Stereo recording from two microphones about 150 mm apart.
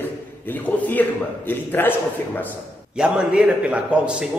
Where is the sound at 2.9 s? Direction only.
5° right (ahead or behind).